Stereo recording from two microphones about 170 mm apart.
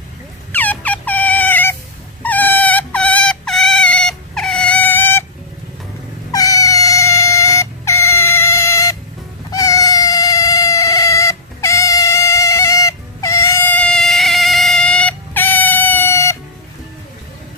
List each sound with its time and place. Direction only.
0.5 s a sound: 10° left (ahead or behind)
2.2 s dog: 10° left (ahead or behind)
6.3 s cat: 20° left (ahead or behind)